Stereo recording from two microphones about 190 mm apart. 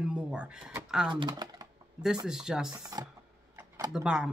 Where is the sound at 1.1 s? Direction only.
20° right (ahead or behind).